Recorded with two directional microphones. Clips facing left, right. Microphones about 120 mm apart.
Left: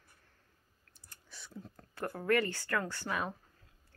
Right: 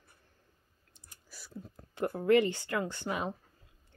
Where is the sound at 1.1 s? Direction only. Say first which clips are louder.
Right 1 dB; 5° right (ahead or behind).